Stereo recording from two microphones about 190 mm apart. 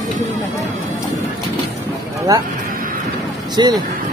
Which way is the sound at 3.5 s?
20° right (ahead or behind).